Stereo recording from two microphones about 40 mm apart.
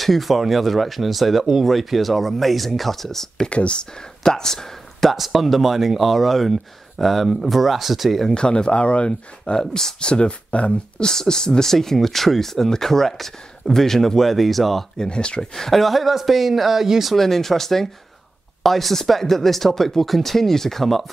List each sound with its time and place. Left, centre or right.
0.0 s speech: centre
3.4 s speech: left
4.2 s speech: centre
5.1 s speech: centre
8.4 s speech: left
11.1 s speech: centre
15.0 s speech: left
15.5 s speech: centre
17.1 s speech: centre